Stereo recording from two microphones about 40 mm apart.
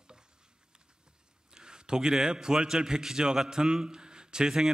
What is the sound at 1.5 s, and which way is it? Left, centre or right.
A man's voice, centre.